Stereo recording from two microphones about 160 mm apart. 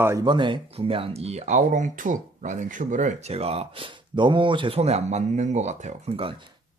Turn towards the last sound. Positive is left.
turn(degrees=-35)  # may be behind; listen again after turning